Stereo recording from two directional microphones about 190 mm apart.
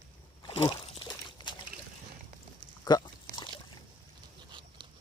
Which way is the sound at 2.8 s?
20° left (ahead or behind).